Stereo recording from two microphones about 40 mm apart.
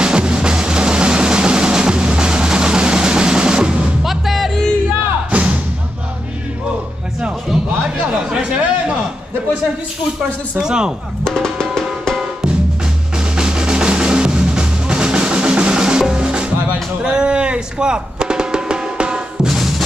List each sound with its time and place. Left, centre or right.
0.0 s music: right
4.0 s music: centre
5.3 s music: right
8.1 s chatter: right
10.6 s speech: centre
13.4 s drum: right
19.4 s music: centre